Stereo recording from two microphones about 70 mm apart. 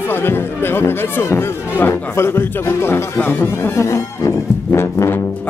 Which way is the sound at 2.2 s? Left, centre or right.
Left.